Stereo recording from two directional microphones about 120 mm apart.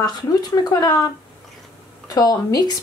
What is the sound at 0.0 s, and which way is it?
A woman's voice, 35° left (ahead or behind).